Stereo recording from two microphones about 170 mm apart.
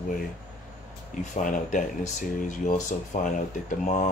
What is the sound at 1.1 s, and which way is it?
Speech, 45° left (ahead or behind).